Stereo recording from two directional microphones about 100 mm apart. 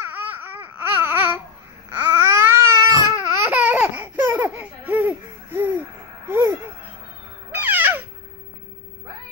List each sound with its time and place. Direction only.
0.0 s a sound: 20° right (ahead or behind)
1.9 s babbling: 20° right (ahead or behind)
3.3 s laughter: 15° right (ahead or behind)
7.5 s music: 20° right (ahead or behind)